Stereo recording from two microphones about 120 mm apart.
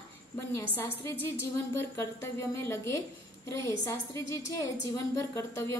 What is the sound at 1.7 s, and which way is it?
A woman's voice, 20° left (ahead or behind).